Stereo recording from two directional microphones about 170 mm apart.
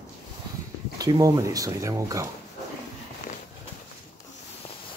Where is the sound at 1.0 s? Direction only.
20° right (ahead or behind).